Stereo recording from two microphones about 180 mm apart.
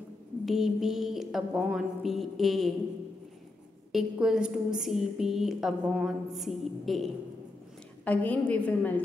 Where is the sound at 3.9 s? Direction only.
5° right (ahead or behind).